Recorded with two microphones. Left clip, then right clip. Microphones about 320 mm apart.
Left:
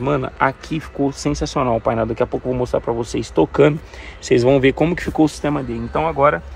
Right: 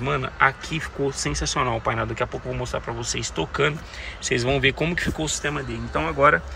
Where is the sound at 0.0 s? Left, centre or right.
Centre.